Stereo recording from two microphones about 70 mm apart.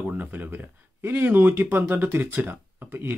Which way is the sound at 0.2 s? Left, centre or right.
Right.